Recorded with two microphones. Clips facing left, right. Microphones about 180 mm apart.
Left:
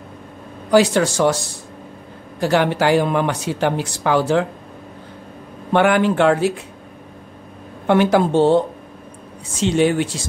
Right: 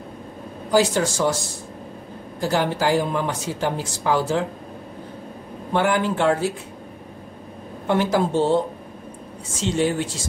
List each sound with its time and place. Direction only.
0.7 s speech: 70° left (ahead or behind)
2.4 s speech: 70° left (ahead or behind)
5.7 s speech: 70° left (ahead or behind)
7.8 s speech: 70° left (ahead or behind)
9.6 s speech: 70° left (ahead or behind)